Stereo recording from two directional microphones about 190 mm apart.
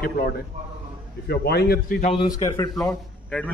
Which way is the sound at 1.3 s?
55° left (ahead or behind).